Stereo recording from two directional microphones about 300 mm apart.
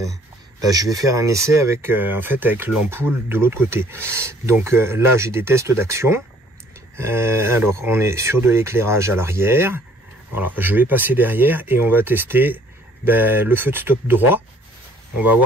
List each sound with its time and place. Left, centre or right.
0.6 s speech: centre